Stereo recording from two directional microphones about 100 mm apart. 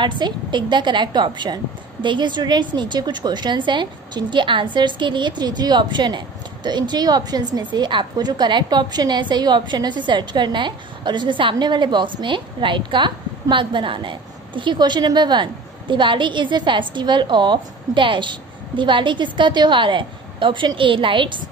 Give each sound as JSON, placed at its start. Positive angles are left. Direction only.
{"t": 0.0, "sound": "a woman's voice", "side_deg": -50}